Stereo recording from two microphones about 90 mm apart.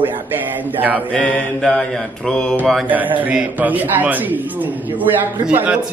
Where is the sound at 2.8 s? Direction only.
20° right (ahead or behind).